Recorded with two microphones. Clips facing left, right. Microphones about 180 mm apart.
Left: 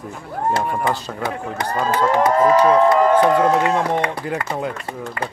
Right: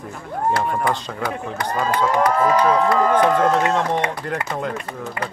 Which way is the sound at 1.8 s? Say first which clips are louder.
Left 2 dB; 25° left (ahead or behind).